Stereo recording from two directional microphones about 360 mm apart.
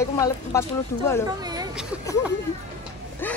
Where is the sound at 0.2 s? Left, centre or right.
Centre.